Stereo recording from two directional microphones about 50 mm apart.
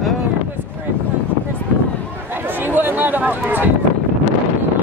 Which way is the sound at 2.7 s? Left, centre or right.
Right.